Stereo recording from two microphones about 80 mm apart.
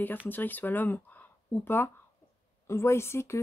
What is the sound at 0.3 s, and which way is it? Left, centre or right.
Speech, left.